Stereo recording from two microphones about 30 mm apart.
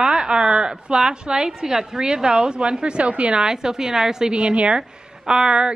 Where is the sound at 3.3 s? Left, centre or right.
Right.